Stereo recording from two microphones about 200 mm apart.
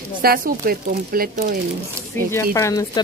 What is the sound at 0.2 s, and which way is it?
A woman's voice, 50° right (ahead or behind).